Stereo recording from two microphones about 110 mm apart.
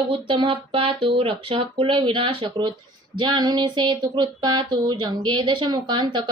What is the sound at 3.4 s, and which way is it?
Speech, 40° right (ahead or behind).